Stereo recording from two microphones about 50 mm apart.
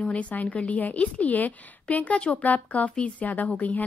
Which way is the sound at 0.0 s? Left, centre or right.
Left.